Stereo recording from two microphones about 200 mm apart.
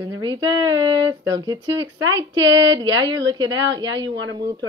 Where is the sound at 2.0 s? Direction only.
70° right (ahead or behind).